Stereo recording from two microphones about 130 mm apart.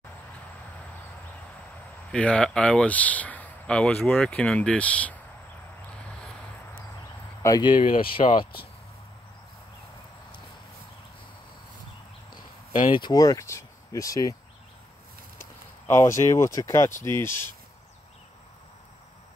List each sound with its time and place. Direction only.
2.1 s speech: 10° left (ahead or behind)
7.4 s speech: 30° left (ahead or behind)
7.7 s speech: 90° left
8.2 s speech: 60° left (ahead or behind)
12.8 s speech: 35° left (ahead or behind)
16.0 s speech: 25° left (ahead or behind)